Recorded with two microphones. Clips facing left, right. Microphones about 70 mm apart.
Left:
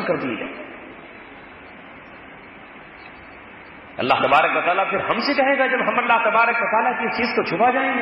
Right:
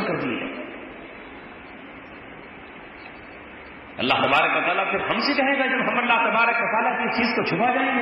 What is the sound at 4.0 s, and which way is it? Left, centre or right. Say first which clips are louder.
Speech: left 4 dB; left.